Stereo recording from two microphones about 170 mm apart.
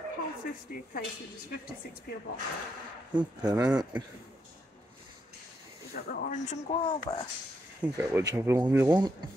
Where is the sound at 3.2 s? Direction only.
25° right (ahead or behind).